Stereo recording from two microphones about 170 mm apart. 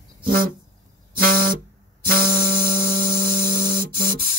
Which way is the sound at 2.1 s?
55° right (ahead or behind).